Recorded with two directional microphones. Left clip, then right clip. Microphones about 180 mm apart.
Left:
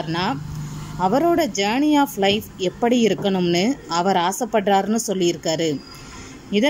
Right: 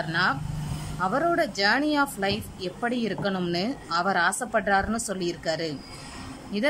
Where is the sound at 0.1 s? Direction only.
15° left (ahead or behind).